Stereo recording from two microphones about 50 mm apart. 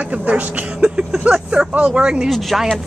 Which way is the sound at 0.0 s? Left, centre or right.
Right.